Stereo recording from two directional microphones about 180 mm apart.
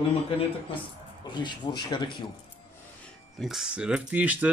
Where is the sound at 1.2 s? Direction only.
25° left (ahead or behind).